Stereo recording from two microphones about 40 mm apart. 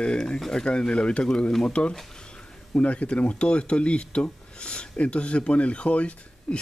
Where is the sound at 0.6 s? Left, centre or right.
Left.